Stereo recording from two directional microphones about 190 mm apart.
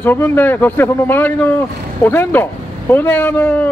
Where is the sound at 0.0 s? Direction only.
10° left (ahead or behind).